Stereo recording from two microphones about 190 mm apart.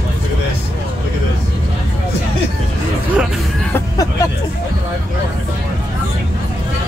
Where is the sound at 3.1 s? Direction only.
5° right (ahead or behind).